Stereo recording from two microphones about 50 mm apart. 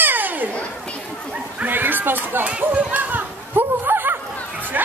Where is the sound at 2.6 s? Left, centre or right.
Right.